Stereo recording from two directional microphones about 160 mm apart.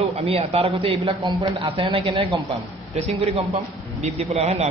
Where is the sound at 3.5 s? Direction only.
45° right (ahead or behind).